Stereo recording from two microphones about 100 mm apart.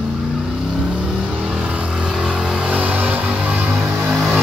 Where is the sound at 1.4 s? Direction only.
5° right (ahead or behind).